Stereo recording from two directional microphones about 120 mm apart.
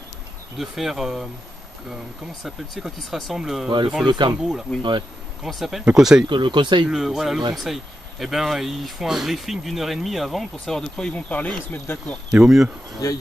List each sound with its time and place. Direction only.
0.6 s speech: centre (ahead or behind)
2.4 s speech: centre (ahead or behind)
4.0 s speech: 40° right (ahead or behind)
4.4 s speech: 5° right (ahead or behind)
6.2 s speech: 40° right (ahead or behind)
6.9 s speech: 5° right (ahead or behind); by 12.2 s 15° left (ahead or behind)
12.3 s speech: 5° right (ahead or behind)
13.0 s speech: 30° left (ahead or behind)